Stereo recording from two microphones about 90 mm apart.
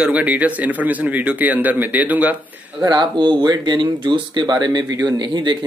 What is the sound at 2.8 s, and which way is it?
Speech, 50° right (ahead or behind).